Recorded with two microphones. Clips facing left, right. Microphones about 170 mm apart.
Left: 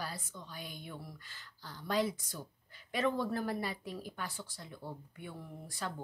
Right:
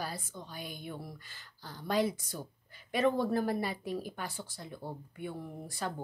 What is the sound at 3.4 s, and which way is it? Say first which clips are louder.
Speech: right 4 dB; 40° right (ahead or behind).